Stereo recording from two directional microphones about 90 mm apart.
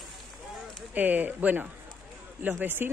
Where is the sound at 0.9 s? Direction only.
20° right (ahead or behind).